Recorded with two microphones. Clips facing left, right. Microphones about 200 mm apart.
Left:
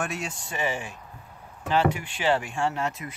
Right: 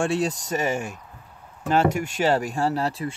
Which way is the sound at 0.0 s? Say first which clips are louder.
Right 9 dB; 35° right (ahead or behind).